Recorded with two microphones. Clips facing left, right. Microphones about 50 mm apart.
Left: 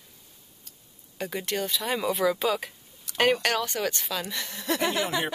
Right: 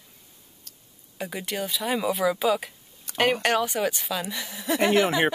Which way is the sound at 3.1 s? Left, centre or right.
Right.